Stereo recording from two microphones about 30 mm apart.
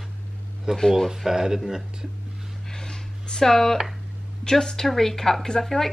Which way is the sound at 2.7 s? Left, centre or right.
Left.